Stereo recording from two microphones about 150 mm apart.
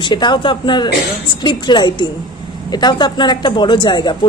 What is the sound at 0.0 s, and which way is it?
A woman's voice, 30° left (ahead or behind).